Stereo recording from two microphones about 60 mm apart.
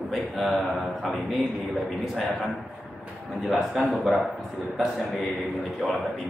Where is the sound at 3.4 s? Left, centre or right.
Centre.